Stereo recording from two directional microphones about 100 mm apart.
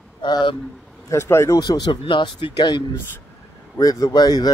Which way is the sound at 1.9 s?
55° left (ahead or behind).